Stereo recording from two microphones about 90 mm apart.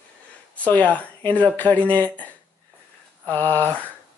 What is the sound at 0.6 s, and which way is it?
Speech, 15° left (ahead or behind).